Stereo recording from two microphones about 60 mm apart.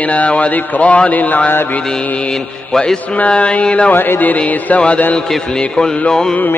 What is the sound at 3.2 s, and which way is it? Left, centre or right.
Speech, centre.